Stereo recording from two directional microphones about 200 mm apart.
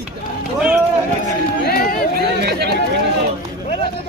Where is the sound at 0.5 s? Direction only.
5° right (ahead or behind).